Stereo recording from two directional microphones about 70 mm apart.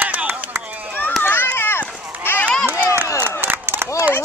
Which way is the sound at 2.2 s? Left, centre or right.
Left.